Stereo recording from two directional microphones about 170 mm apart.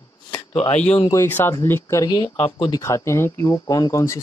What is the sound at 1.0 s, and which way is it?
Speech, 15° left (ahead or behind).